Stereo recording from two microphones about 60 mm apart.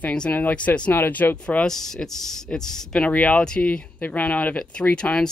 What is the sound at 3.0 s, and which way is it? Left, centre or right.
Speech, left.